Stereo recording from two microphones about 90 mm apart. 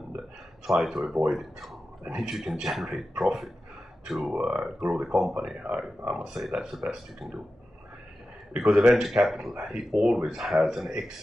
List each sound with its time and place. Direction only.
0.7 s speech: 5° right (ahead or behind)
4.4 s speech: 15° right (ahead or behind)
4.9 s speech: 5° right (ahead or behind)
8.5 s speech: 5° right (ahead or behind)